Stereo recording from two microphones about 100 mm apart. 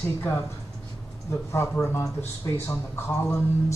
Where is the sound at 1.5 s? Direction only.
25° left (ahead or behind).